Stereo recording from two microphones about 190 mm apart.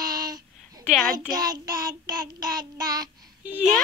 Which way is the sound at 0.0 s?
20° right (ahead or behind).